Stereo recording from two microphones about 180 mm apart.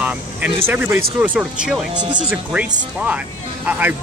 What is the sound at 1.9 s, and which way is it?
Speech, 25° right (ahead or behind).